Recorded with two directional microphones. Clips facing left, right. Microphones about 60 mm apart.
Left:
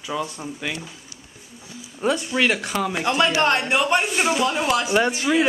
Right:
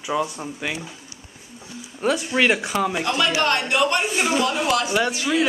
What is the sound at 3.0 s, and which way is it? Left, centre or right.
Speech, centre.